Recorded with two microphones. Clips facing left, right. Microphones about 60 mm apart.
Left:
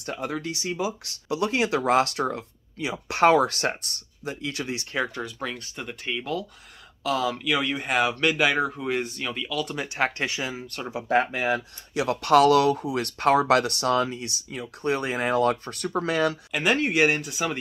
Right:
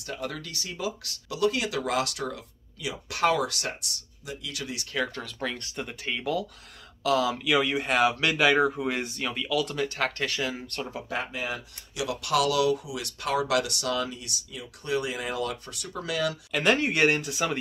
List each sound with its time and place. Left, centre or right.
0.0 s speech: left
5.2 s speech: centre
9.8 s speech: centre
11.1 s speech: left
16.5 s speech: centre